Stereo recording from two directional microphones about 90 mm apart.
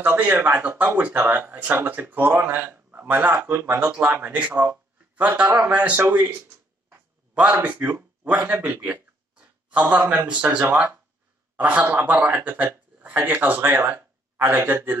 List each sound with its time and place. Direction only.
0.0 s speech: 20° right (ahead or behind)
6.0 s speech: 25° right (ahead or behind)
6.9 s a sound: 20° right (ahead or behind)
8.5 s speech: 30° right (ahead or behind)
8.8 s speech: 20° right (ahead or behind)